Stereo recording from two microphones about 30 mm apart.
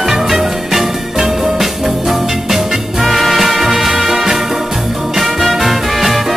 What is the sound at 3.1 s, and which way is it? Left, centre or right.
Music, centre.